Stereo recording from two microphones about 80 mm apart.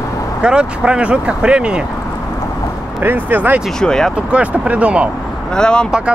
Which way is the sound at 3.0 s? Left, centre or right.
Right.